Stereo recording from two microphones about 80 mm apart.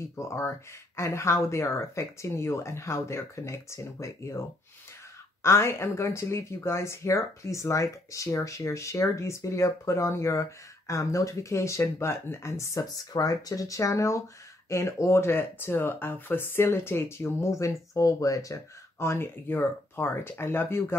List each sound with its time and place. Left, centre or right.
0.1 s speech: left